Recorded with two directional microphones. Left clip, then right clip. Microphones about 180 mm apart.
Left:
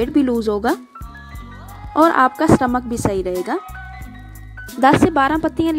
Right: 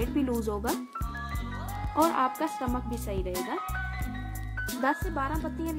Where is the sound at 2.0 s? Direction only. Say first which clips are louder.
Left 18 dB; 40° left (ahead or behind).